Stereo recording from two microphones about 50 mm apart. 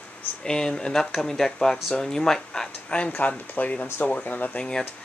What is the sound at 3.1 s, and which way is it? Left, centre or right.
Speech, left.